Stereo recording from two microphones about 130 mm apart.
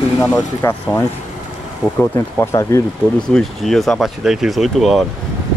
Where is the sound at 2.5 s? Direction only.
20° left (ahead or behind).